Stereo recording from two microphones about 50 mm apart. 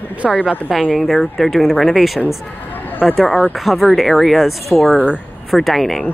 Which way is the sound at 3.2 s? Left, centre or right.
Left.